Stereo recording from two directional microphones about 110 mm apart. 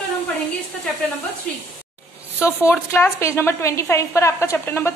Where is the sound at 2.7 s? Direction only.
20° left (ahead or behind).